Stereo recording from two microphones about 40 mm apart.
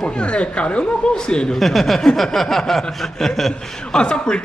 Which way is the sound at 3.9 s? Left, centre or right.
Left.